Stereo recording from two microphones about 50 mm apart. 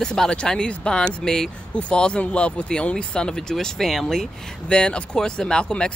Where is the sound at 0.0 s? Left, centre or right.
Centre.